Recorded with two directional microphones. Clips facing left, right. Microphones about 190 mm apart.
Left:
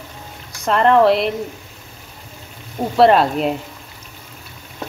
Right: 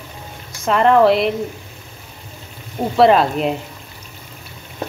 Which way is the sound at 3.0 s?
Centre (ahead or behind).